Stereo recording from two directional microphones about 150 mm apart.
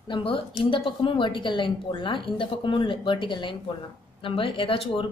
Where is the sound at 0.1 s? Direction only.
35° left (ahead or behind).